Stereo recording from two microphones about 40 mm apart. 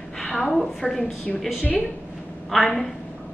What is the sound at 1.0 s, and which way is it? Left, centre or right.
Speech, left.